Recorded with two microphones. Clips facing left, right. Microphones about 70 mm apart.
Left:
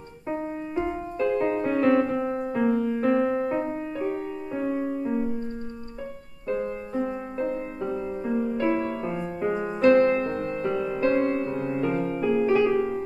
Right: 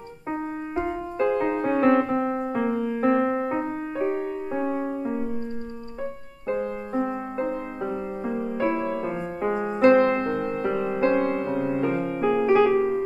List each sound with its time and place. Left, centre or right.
0.3 s music: right
2.5 s music: centre
6.4 s music: right
8.3 s music: centre
9.8 s music: right
10.4 s music: right
11.9 s music: centre
12.3 s music: right